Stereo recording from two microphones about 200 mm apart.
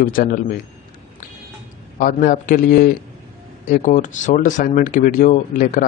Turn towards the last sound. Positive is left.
turn(degrees=40)  # may be behind; listen again after turning